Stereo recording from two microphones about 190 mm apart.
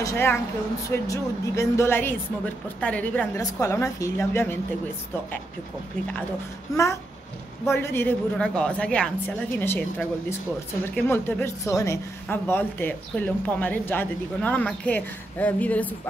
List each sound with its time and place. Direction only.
0.0 s a woman's voice: 15° left (ahead or behind)
6.7 s a woman's voice: 20° left (ahead or behind)